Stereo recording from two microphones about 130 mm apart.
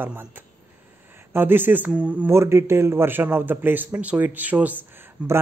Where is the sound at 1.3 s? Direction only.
15° right (ahead or behind).